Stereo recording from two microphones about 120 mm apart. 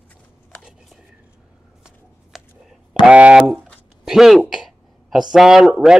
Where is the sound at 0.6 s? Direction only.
5° right (ahead or behind).